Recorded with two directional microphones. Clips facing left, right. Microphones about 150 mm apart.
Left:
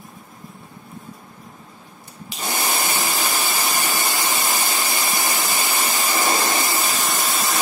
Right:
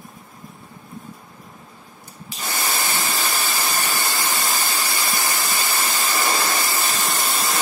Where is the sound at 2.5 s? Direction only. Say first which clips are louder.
Left 2 dB; 15° left (ahead or behind).